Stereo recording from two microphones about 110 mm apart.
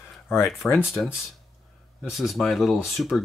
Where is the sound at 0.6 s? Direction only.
5° left (ahead or behind).